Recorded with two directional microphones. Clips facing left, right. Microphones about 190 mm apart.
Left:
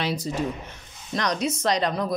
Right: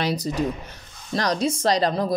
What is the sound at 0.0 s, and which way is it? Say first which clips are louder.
Speech: right 3 dB; 40° right (ahead or behind).